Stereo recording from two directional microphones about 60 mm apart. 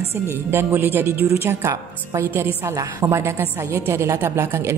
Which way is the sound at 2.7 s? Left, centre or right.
Right.